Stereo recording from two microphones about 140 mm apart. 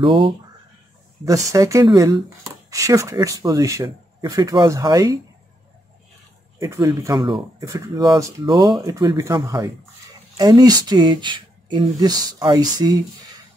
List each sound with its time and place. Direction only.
1.2 s speech: 25° right (ahead or behind)
6.8 s speech: 25° right (ahead or behind)
7.6 s speech: 25° right (ahead or behind)